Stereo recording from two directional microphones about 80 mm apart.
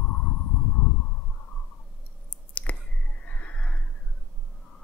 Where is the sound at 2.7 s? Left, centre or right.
Centre.